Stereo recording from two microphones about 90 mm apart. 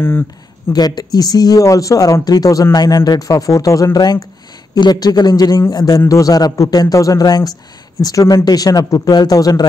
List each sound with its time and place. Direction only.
0.0 s speech: 25° left (ahead or behind)
0.7 s speech: 50° left (ahead or behind)